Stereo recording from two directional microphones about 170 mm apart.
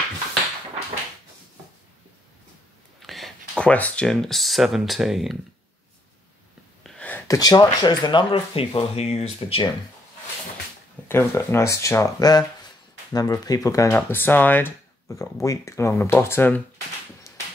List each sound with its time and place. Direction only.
3.0 s speech: centre (ahead or behind)
6.8 s speech: 5° left (ahead or behind); by 9.7 s 35° left (ahead or behind)
11.1 s speech: 15° left (ahead or behind)